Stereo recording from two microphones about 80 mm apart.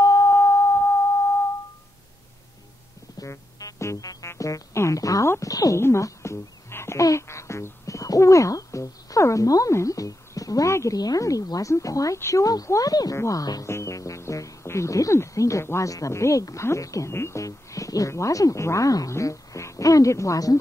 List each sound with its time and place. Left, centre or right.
0.0 s a sound: left
0.3 s a sound: left
3.2 s music: left
4.3 s speech: left
5.8 s wail: left
11.0 s speech: left
13.7 s speech: left